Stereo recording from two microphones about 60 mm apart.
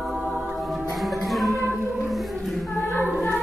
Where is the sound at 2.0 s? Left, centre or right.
Centre.